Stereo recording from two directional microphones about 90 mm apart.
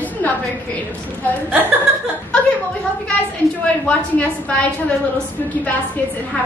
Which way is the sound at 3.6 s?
15° left (ahead or behind).